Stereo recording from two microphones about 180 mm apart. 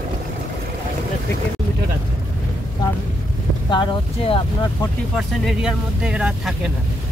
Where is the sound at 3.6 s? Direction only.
30° left (ahead or behind).